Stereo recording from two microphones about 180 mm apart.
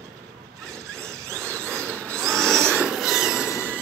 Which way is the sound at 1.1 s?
15° right (ahead or behind).